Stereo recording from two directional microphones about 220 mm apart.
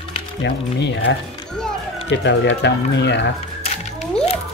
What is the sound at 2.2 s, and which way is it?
Speech, 55° left (ahead or behind).